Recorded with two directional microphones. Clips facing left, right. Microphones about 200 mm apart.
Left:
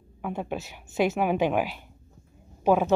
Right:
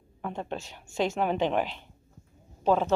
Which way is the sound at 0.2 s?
10° left (ahead or behind).